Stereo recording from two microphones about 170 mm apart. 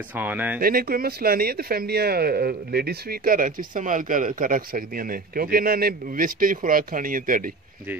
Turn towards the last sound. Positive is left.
turn(degrees=-55)  # may be behind; listen again after turning